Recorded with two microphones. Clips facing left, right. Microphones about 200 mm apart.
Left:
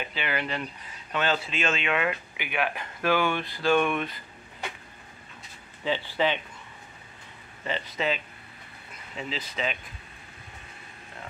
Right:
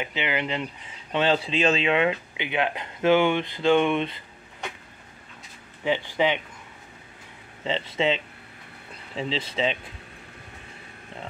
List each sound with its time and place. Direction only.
0.0 s speech: 20° right (ahead or behind)
1.1 s speech: 30° right (ahead or behind)
5.9 s speech: 15° right (ahead or behind)
7.6 s speech: 25° right (ahead or behind)